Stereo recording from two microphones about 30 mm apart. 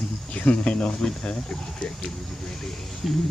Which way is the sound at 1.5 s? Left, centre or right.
Left.